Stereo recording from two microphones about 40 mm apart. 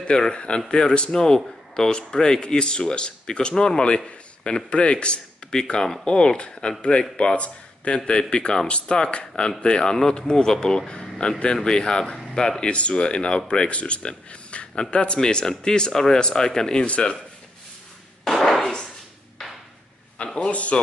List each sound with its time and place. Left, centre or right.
0.0 s a man's voice: left
11.1 s speech: left
11.5 s speech: centre
12.6 s speech: left
15.1 s speech: centre
16.8 s speech: left
18.2 s a sound: centre
18.6 s a sound: centre
20.3 s speech: left